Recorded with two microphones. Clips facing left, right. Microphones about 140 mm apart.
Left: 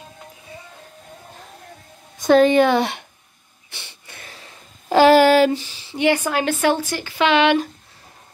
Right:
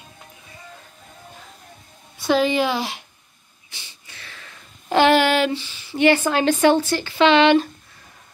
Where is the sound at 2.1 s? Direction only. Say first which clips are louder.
Left 6 dB; 45° left (ahead or behind).